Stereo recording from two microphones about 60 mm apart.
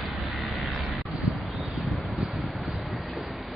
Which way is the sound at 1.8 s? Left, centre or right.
Centre.